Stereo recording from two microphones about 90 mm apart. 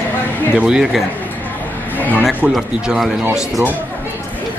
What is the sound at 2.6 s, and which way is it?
Speech, 5° right (ahead or behind).